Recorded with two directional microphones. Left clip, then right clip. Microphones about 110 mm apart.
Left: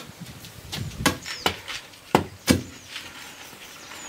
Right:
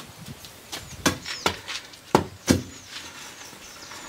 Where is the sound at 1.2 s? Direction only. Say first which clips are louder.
Even; centre (ahead or behind).